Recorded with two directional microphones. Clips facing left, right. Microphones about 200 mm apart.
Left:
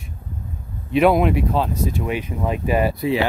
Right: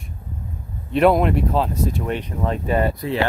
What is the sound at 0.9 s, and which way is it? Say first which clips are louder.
Speech: even; centre (ahead or behind).